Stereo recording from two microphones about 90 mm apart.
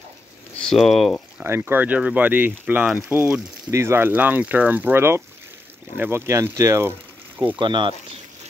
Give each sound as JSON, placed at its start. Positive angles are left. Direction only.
{"t": 0.6, "sound": "speech", "side_deg": 5}
{"t": 1.4, "sound": "speech", "side_deg": -25}
{"t": 7.5, "sound": "speech", "side_deg": -60}